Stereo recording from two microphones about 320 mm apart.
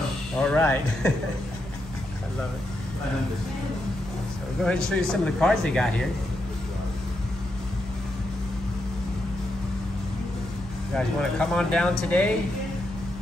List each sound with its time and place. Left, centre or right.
0.4 s speech: centre
4.6 s speech: centre
11.0 s speech: centre